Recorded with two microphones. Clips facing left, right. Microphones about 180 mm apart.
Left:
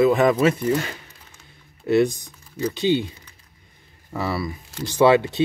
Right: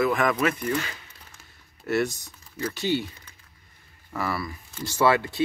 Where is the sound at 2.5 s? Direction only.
20° left (ahead or behind).